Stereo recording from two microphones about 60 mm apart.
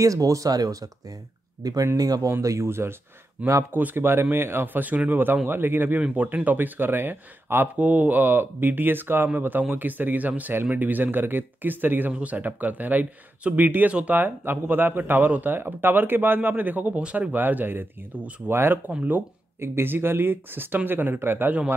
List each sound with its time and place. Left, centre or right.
0.0 s speech: right
2.4 s speech: right
2.7 s speech: right
3.4 s speech: right
3.7 s speech: right
4.8 s speech: right
5.9 s speech: right
7.8 s speech: right
18.9 s speech: right
19.6 s speech: right